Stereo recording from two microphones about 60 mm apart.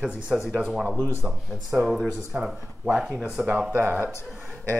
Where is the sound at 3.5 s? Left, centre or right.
Right.